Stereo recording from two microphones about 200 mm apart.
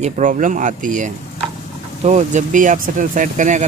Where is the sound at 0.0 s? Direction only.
40° right (ahead or behind).